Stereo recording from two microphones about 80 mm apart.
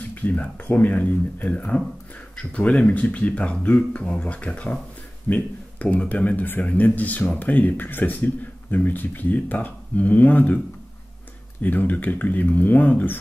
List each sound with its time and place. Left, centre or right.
0.1 s speech: left
11.6 s speech: left